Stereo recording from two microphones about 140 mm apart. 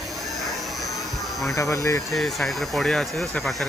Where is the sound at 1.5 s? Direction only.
25° left (ahead or behind).